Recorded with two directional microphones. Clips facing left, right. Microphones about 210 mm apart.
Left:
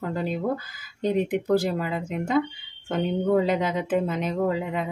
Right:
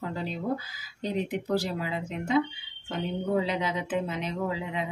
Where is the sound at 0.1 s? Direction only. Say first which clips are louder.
Left 5 dB; 50° left (ahead or behind).